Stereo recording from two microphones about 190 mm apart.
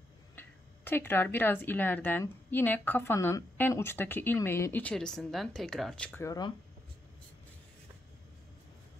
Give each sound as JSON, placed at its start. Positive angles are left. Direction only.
{"t": 0.4, "sound": "speech", "side_deg": 10}
{"t": 6.2, "sound": "speech", "side_deg": 20}